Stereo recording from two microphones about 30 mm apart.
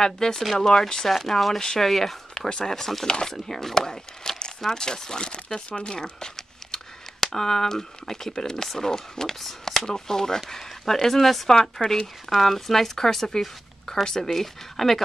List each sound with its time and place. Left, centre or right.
0.0 s speech: centre
1.0 s speech: centre
1.6 s speech: centre
1.9 s speech: centre
9.4 s speech: centre
9.8 s speech: centre